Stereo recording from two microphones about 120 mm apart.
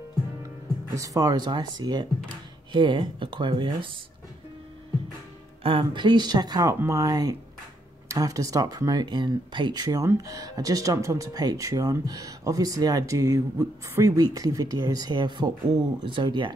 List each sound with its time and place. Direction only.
0.9 s speech: 30° right (ahead or behind)
5.6 s speech: 45° right (ahead or behind)